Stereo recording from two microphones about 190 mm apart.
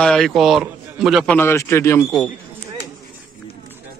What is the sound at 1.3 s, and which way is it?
Speech, 10° left (ahead or behind).